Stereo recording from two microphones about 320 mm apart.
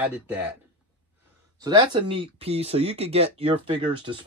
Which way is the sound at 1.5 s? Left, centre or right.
Centre.